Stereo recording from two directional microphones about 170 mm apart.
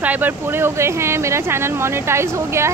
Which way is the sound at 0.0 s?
10° right (ahead or behind).